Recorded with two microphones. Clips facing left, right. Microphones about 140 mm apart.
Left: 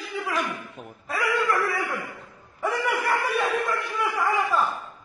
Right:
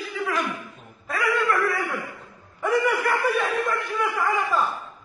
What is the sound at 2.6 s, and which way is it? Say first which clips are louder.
Snicker: right 4 dB; centre (ahead or behind).